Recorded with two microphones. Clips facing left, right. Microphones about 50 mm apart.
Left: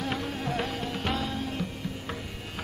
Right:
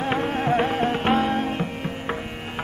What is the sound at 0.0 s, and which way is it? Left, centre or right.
Music, right.